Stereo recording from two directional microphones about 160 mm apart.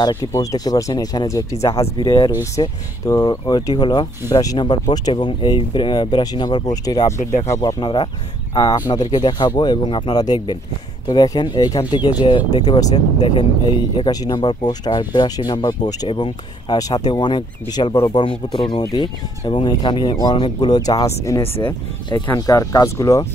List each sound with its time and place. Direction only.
0.0 s speech: 20° left (ahead or behind)
21.4 s speech: 35° left (ahead or behind)
22.1 s speech: 20° left (ahead or behind)